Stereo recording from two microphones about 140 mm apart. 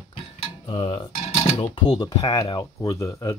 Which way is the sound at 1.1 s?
55° left (ahead or behind).